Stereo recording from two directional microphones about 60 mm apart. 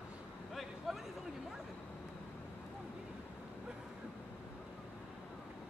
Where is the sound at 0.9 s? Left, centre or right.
Centre.